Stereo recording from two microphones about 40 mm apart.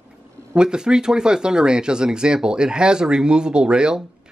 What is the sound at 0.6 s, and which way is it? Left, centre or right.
Speech, right.